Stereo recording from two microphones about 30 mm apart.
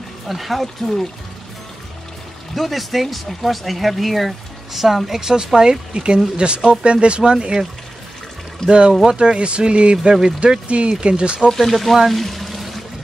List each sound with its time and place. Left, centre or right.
0.3 s speech: centre
2.5 s speech: centre
5.3 s speech: right
8.6 s speech: right
11.5 s speech: centre
12.1 s pour: centre